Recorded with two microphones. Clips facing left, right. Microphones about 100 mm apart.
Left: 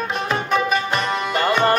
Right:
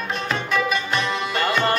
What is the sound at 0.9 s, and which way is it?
Tabla, 30° left (ahead or behind).